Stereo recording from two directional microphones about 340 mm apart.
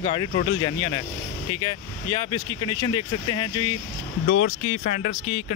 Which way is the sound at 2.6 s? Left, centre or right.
Centre.